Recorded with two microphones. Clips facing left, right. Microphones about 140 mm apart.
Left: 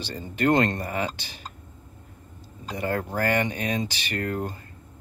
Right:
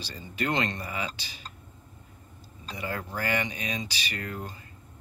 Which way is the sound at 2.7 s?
50° left (ahead or behind).